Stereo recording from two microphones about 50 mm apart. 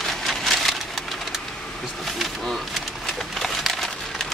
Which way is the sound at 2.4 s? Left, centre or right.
Centre.